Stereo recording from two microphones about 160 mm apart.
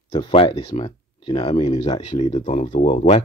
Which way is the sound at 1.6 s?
40° left (ahead or behind).